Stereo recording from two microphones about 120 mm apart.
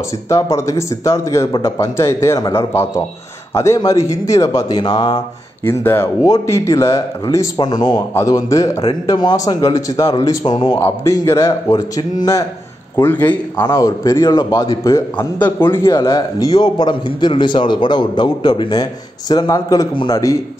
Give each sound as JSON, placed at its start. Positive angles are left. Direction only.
{"t": 0.3, "sound": "a man's voice", "side_deg": 25}
{"t": 4.7, "sound": "a man's voice", "side_deg": 40}
{"t": 5.6, "sound": "a man's voice", "side_deg": 20}
{"t": 11.2, "sound": "a man's voice", "side_deg": 25}
{"t": 12.9, "sound": "a man's voice", "side_deg": 15}
{"t": 19.9, "sound": "a man's voice", "side_deg": 45}